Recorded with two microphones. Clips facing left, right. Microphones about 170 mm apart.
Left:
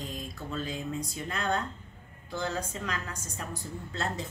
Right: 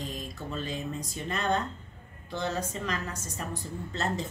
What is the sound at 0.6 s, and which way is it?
A woman's voice, 10° left (ahead or behind).